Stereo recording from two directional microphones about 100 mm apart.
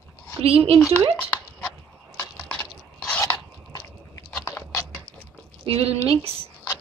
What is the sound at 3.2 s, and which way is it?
Biting, 30° left (ahead or behind).